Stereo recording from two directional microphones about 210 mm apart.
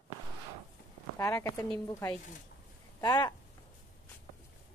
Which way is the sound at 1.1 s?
15° left (ahead or behind).